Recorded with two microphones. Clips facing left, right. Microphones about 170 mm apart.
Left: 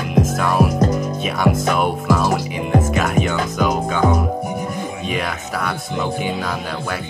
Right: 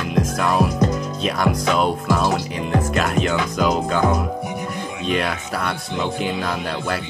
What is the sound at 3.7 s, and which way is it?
Speech, 5° left (ahead or behind).